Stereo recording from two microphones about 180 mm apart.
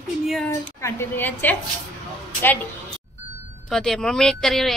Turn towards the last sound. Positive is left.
turn(degrees=0)  # may be behind; listen again after turning